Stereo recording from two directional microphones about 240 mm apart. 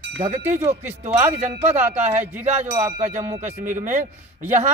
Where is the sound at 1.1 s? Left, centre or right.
Centre.